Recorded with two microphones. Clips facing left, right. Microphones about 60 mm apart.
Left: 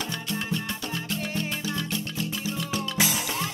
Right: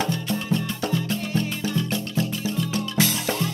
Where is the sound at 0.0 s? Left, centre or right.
Right.